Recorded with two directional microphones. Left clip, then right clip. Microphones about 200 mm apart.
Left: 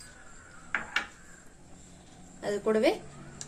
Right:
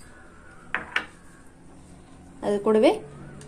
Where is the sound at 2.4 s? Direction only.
30° right (ahead or behind).